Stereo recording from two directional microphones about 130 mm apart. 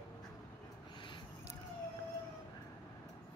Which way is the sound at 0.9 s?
40° left (ahead or behind).